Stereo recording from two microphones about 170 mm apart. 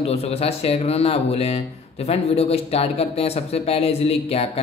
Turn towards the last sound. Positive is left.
turn(degrees=35)  # may be behind; listen again after turning